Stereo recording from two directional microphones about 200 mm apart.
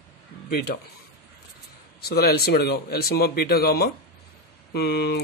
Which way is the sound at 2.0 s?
50° left (ahead or behind).